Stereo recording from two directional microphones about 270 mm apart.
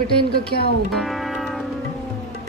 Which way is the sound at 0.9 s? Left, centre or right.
Centre.